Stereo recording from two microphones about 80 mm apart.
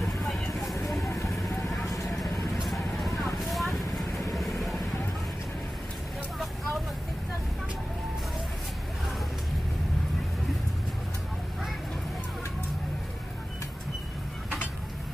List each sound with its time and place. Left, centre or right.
0.7 s vehicle: left
2.3 s vehicle: centre
3.3 s a sound: centre
4.3 s vehicle: centre